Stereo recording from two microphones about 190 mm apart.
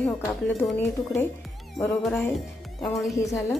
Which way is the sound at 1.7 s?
5° left (ahead or behind).